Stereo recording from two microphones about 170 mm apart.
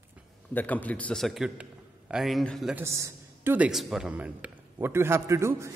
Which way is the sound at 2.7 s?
15° right (ahead or behind).